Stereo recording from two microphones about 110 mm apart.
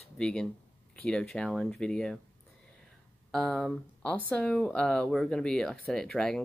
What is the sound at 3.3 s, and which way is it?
Speech, 5° left (ahead or behind).